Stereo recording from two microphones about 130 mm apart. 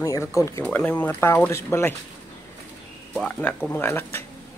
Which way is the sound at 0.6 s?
10° left (ahead or behind).